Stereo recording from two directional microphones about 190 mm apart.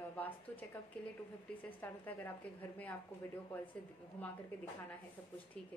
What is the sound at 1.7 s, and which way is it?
Speech, 10° left (ahead or behind).